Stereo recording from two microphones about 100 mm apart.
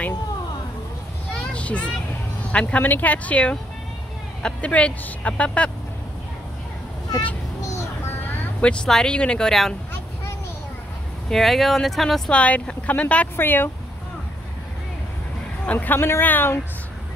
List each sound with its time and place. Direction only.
1.5 s vehicle: 15° left (ahead or behind)
2.6 s speech: 20° left (ahead or behind)
7.6 s a sound: 30° left (ahead or behind)
8.5 s speech: 10° left (ahead or behind)
11.2 s speech: centre (ahead or behind)
12.4 s speech: 15° left (ahead or behind)
15.6 s speech: 15° left (ahead or behind)